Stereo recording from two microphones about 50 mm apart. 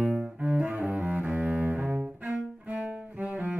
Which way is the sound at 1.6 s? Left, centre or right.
Centre.